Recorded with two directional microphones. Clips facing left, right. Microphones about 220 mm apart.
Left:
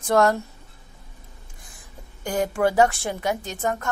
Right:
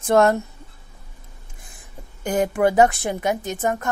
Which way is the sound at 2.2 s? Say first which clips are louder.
Right 3 dB; 20° right (ahead or behind).